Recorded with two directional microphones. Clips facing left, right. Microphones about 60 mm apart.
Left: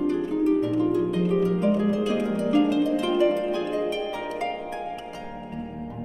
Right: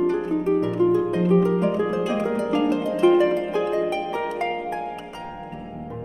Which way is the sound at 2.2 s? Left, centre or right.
Right.